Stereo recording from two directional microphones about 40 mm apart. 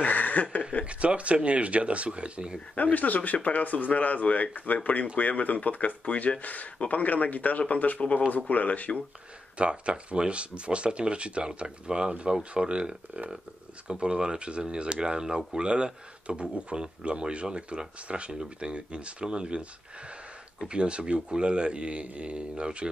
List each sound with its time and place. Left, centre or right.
0.0 s speech: left
0.8 s speech: right
2.7 s speech: left
9.6 s speech: right
20.6 s speech: right